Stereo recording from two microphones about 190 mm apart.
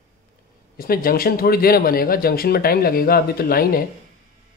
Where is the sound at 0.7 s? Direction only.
50° left (ahead or behind).